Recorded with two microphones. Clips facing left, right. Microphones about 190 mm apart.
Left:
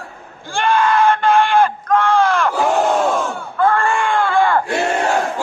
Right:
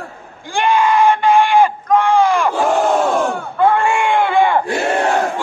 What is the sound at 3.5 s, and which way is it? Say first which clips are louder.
Screaming: right 1 dB; 15° right (ahead or behind).